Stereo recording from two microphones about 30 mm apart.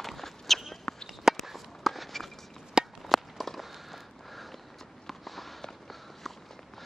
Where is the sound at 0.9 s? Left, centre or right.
Left.